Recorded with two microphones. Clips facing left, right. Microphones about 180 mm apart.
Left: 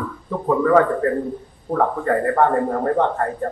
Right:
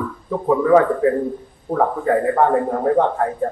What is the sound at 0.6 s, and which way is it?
A man's voice, 5° right (ahead or behind).